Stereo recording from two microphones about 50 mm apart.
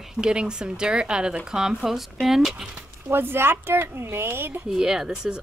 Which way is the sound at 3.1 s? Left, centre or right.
Right.